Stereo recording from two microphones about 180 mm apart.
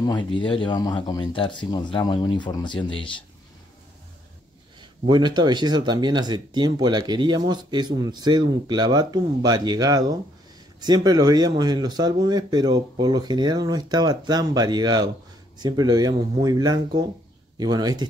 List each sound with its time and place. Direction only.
0.0 s speech: 25° left (ahead or behind)
5.0 s speech: 25° right (ahead or behind)